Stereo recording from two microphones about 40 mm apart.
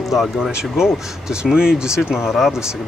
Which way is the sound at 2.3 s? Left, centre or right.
Centre.